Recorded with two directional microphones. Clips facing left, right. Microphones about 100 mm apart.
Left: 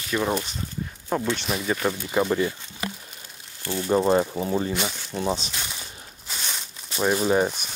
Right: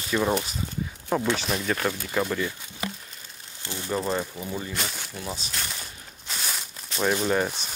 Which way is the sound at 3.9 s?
25° left (ahead or behind).